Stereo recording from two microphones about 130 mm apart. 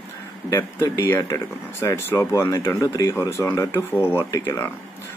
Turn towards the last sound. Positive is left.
turn(degrees=20)  # may be behind; listen again after turning